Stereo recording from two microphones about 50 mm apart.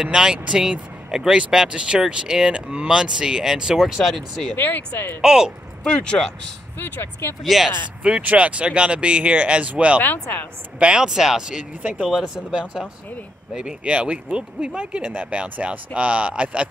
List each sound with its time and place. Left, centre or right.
0.0 s speech: centre
4.0 s speech: centre
4.6 s speech: left
5.2 s speech: centre
5.9 s speech: centre
6.8 s speech: left
7.4 s speech: centre
8.0 s speech: right
9.9 s speech: left
10.8 s speech: centre